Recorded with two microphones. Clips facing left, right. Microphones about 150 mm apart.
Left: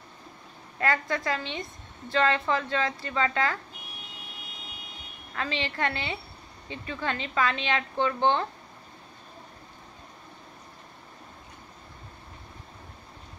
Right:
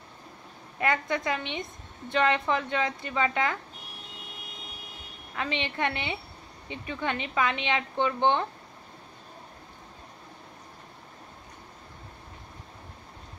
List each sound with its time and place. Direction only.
0.7 s a woman's voice: 20° right (ahead or behind)
5.3 s a woman's voice: 20° right (ahead or behind)